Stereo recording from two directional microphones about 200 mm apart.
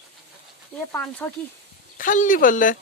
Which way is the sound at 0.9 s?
10° left (ahead or behind).